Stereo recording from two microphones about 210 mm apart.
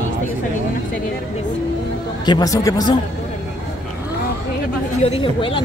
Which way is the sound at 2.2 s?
20° left (ahead or behind).